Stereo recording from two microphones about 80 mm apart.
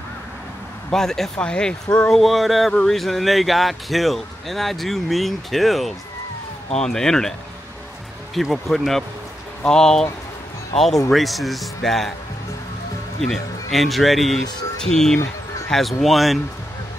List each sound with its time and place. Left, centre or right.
0.9 s speech: centre
2.1 s speech: centre
8.4 s speech: centre
11.1 s speech: centre
13.2 s speech: centre